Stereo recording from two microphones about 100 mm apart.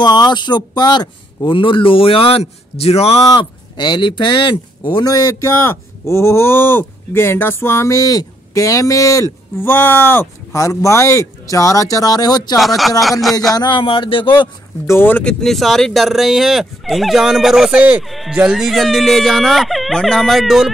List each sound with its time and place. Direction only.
0.0 s a man's voice: 45° left (ahead or behind); by 3.2 s 85° left
3.3 s speech: 45° left (ahead or behind)
12.5 s speech: centre (ahead or behind)
13.5 s a man's voice: 45° left (ahead or behind)
14.9 s speech: 20° left (ahead or behind); by 18.0 s 10° right (ahead or behind)
18.0 s speech: centre (ahead or behind)